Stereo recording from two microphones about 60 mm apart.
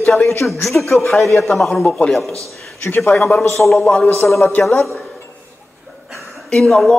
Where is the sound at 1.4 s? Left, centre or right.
Centre.